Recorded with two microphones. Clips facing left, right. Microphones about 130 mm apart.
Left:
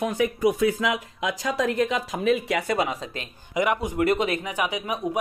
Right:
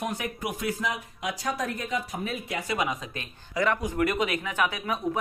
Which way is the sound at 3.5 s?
20° left (ahead or behind).